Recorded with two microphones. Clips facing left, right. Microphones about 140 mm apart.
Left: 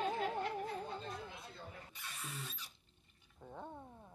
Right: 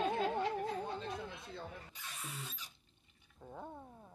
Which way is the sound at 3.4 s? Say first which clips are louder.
Right 1 dB; 10° right (ahead or behind).